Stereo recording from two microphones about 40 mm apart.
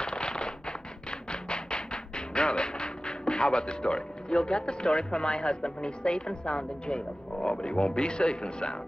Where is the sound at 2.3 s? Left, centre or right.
Left.